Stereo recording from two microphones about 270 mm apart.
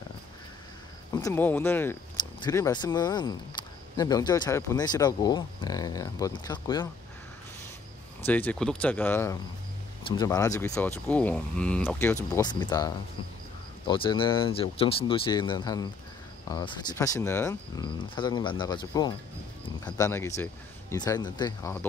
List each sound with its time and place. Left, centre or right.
1.1 s speech: centre
8.3 s speech: centre